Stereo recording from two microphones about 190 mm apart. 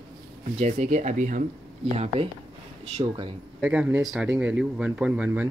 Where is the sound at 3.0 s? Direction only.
25° right (ahead or behind).